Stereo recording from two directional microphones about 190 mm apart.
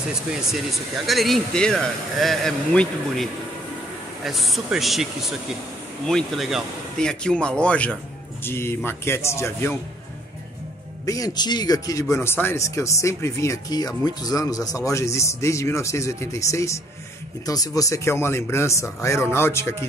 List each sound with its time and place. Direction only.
0.5 s speech: centre (ahead or behind)
6.0 s speech: centre (ahead or behind)
11.1 s speech: 20° left (ahead or behind)